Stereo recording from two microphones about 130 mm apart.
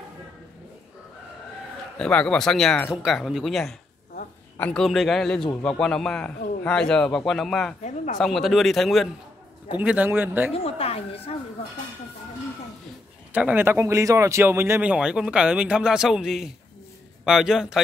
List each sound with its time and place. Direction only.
2.0 s a man's voice: 5° left (ahead or behind)
7.8 s speech: 75° left (ahead or behind)
8.2 s a man's voice: centre (ahead or behind)
9.8 s speech: 10° right (ahead or behind)
10.5 s speech: 50° left (ahead or behind)
13.3 s a man's voice: 10° right (ahead or behind)